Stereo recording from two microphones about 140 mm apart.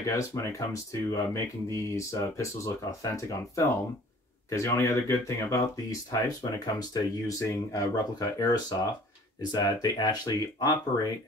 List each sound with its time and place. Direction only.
0.0 s speech: 20° left (ahead or behind)